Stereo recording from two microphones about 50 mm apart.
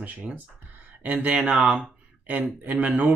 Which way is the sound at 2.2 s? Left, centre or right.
Right.